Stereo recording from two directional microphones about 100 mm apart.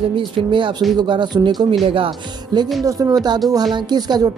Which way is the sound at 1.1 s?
50° right (ahead or behind).